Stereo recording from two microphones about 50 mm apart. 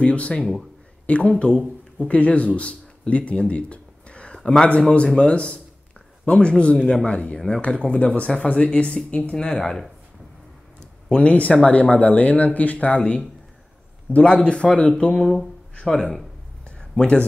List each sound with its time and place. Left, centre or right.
0.0 s speech: left
4.4 s a man's voice: centre
4.7 s speech: left
11.1 s speech: left